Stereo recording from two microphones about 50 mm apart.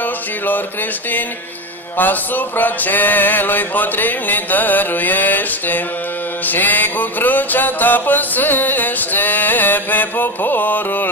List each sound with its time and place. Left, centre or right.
2.0 s music: left